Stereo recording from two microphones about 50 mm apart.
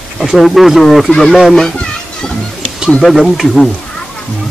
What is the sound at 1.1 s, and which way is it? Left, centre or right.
Speech, centre.